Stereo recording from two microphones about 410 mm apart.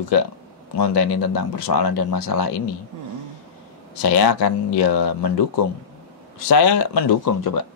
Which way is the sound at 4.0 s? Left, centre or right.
Left.